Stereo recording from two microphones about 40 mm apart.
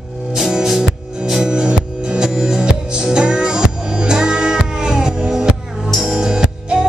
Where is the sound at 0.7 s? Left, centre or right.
Centre.